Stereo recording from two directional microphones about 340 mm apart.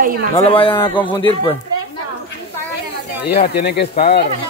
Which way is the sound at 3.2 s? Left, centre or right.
Left.